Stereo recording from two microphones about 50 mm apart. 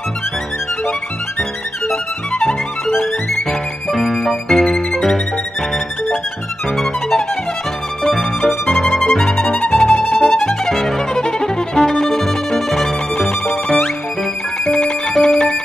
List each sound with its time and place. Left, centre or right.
3.9 s music: centre
6.8 s music: centre
11.1 s violin: centre
14.7 s music: left
15.1 s ringtone: centre